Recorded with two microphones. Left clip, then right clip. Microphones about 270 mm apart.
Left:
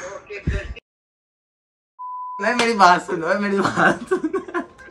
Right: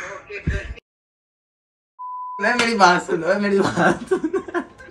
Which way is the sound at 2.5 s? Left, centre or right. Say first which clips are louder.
Left 1 dB; left.